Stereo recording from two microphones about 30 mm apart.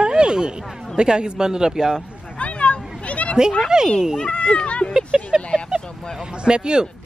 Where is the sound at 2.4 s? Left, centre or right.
Left.